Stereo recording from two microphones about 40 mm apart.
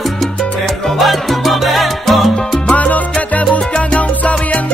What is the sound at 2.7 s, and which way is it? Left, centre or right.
Salsa music, left.